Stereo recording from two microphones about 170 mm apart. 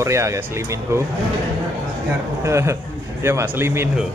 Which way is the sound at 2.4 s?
15° right (ahead or behind).